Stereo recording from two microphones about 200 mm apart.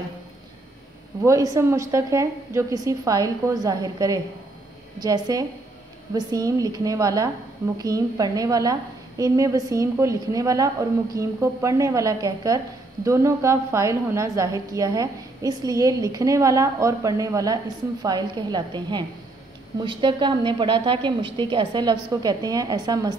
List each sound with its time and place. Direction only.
1.2 s a woman's voice: 15° right (ahead or behind)